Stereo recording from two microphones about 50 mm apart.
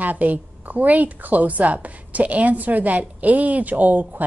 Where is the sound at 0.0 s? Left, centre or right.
Right.